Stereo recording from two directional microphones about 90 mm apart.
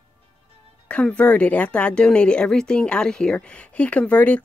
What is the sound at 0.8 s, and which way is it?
Speech, 15° left (ahead or behind).